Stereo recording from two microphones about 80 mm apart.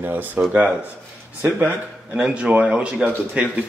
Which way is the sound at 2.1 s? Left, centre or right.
Centre.